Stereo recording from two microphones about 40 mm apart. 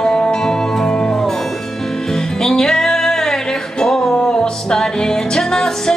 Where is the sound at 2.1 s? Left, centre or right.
Centre.